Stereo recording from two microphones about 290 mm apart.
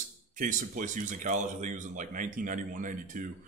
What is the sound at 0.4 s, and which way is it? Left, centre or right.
Speech, right.